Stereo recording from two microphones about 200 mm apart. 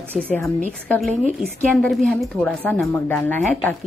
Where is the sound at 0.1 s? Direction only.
5° left (ahead or behind).